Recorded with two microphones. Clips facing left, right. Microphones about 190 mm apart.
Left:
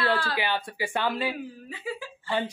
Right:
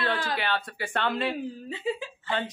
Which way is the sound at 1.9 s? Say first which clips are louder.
Right 5 dB; 25° right (ahead or behind).